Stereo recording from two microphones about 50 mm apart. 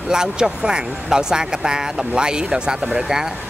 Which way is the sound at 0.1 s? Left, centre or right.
Centre.